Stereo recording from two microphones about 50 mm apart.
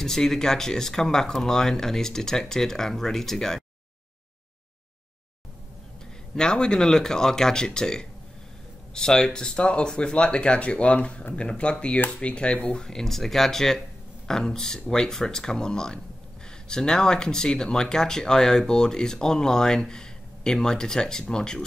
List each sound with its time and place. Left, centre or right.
0.0 s speech: centre
6.3 s speech: centre